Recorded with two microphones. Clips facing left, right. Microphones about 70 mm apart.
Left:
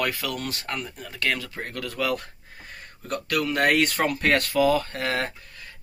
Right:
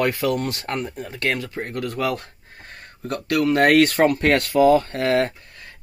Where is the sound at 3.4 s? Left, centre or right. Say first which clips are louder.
Right 7 dB; right.